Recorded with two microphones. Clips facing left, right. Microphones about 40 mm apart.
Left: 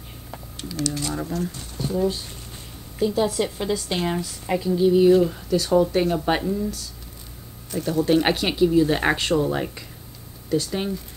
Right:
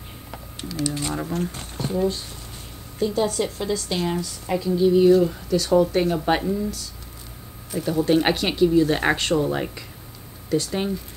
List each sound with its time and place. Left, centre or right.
0.8 s speech: centre
1.3 s speech: right
3.0 s speech: centre
7.7 s speech: centre